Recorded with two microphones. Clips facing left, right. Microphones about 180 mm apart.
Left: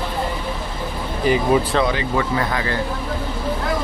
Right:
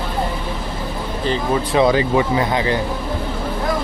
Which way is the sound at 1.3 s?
10° left (ahead or behind).